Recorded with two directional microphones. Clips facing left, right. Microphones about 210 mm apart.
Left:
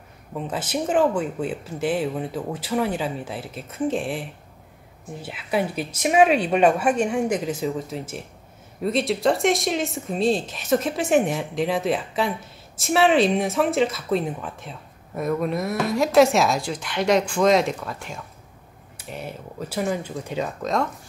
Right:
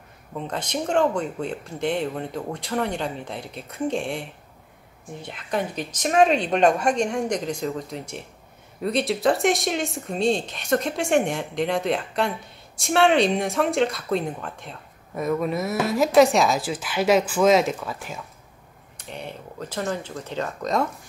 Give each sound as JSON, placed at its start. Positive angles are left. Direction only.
{"t": 0.3, "sound": "speech", "side_deg": 5}